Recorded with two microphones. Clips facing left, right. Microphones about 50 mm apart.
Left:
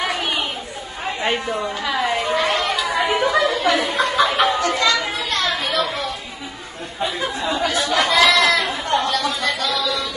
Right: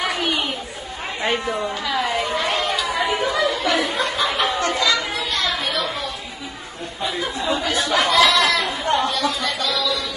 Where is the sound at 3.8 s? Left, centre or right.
Left.